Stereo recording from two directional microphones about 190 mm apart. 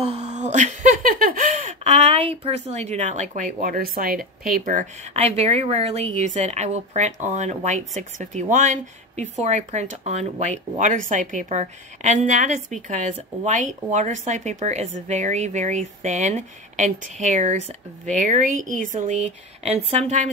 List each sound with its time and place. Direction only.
0.0 s a woman's voice: 35° right (ahead or behind)